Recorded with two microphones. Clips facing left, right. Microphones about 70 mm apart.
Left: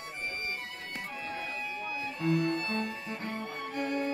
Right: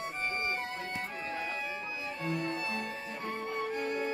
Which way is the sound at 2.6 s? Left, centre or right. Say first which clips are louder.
Left 3 dB; centre.